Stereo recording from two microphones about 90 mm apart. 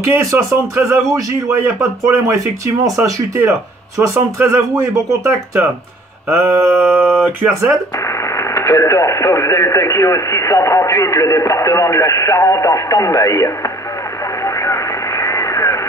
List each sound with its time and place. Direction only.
0.3 s speech: 35° right (ahead or behind)
6.2 s mantra: 30° right (ahead or behind)
8.4 s speech: 30° left (ahead or behind)
14.4 s radio: 35° left (ahead or behind)